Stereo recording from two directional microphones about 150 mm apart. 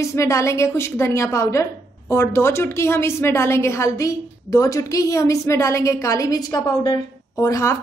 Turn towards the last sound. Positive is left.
turn(degrees=20)  # may be behind; listen again after turning